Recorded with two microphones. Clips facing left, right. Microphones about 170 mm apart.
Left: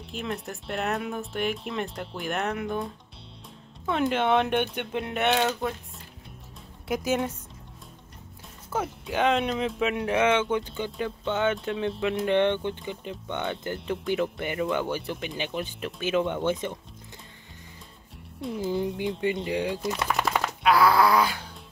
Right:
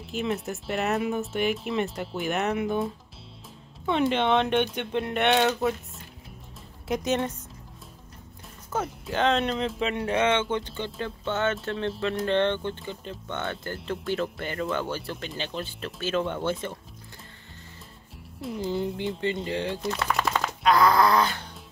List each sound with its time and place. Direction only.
0.0 s speech: centre (ahead or behind)
6.9 s speech: 5° left (ahead or behind)
8.7 s speech: 5° left (ahead or behind)
18.4 s speech: centre (ahead or behind)
18.7 s speech: 10° left (ahead or behind)
20.2 s a sound: 5° left (ahead or behind)